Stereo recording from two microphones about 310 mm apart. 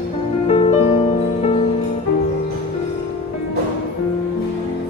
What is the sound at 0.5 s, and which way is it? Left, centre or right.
Music, left.